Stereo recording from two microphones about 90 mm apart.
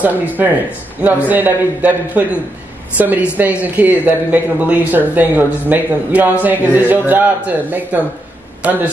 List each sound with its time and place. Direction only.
0.4 s a man's voice: 20° right (ahead or behind)